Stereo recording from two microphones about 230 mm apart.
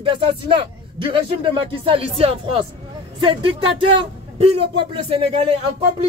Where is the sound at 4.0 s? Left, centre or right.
Right.